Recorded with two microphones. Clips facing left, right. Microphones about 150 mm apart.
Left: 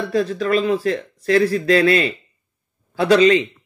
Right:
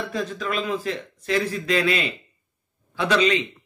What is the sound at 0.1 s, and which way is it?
Speech, 35° left (ahead or behind).